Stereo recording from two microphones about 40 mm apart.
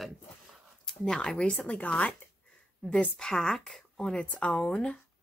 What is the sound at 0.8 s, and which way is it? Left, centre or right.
Speech, centre.